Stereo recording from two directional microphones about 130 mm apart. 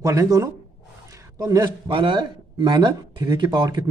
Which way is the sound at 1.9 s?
40° right (ahead or behind).